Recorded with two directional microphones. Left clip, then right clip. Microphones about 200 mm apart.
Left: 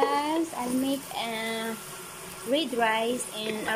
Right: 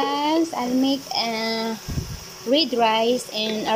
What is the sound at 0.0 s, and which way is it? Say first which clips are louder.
Frying: right 4 dB; 10° right (ahead or behind).